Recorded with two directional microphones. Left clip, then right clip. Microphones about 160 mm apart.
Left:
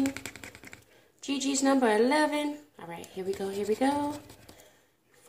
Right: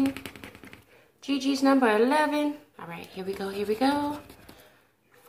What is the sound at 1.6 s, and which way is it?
Speech, 15° left (ahead or behind).